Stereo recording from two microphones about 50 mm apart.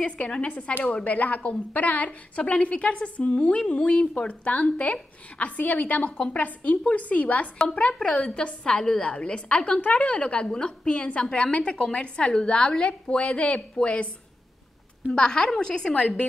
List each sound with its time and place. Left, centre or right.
0.0 s a woman's voice: left
15.1 s a woman's voice: centre